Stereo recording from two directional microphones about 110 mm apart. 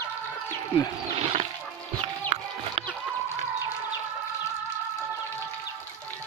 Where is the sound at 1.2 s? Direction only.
70° right (ahead or behind).